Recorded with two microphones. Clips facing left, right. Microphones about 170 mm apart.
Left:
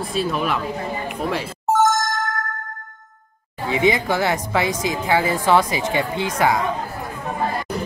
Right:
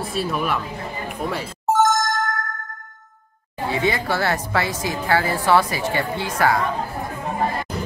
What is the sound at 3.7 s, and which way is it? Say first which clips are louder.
Speech: left 3 dB; 15° left (ahead or behind).